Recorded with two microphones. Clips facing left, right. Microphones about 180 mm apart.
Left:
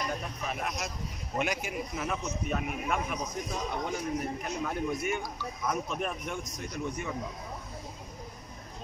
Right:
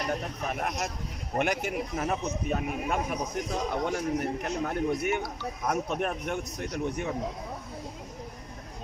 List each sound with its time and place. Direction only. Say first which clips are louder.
0.5 s speech: right 3 dB; 55° right (ahead or behind)
2.0 s a man's voice: right 3 dB; 35° right (ahead or behind)
3.5 s a man's voice: right 5 dB; 75° right (ahead or behind)